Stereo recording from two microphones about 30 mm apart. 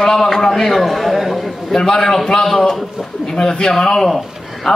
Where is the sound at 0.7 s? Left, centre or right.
Centre.